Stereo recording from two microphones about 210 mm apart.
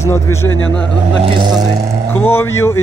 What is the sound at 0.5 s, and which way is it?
Speech, 70° left (ahead or behind).